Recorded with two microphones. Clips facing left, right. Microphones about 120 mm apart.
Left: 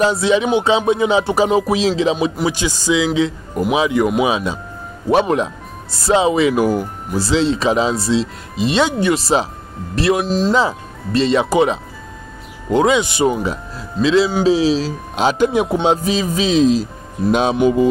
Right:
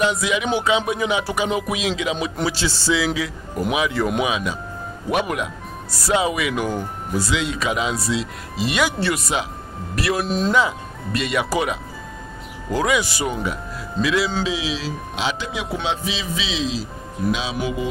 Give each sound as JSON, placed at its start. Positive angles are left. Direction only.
{"t": 0.0, "sound": "music", "side_deg": 30}
{"t": 2.4, "sound": "speech", "side_deg": 15}
{"t": 10.2, "sound": "speech", "side_deg": 0}
{"t": 10.5, "sound": "speech", "side_deg": 30}
{"t": 14.4, "sound": "a man's voice", "side_deg": 40}